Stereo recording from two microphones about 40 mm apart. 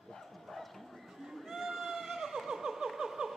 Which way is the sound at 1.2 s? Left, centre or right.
Centre.